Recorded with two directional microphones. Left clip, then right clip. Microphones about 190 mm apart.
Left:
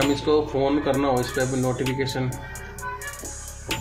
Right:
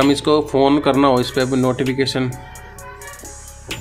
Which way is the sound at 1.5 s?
Centre (ahead or behind).